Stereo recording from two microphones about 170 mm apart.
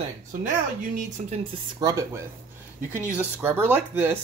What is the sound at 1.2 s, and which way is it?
Speech, 45° right (ahead or behind).